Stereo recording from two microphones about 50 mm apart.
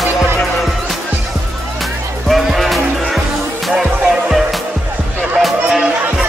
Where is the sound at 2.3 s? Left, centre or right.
Centre.